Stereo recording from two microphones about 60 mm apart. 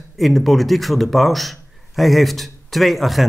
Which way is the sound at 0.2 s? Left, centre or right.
Centre.